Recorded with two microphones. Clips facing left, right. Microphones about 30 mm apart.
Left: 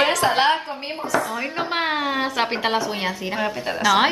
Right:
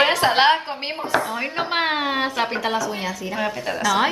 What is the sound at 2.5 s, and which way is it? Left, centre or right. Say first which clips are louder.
Speech: left 1 dB; left.